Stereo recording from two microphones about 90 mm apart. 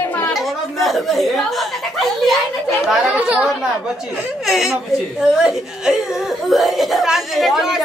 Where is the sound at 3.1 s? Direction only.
15° right (ahead or behind).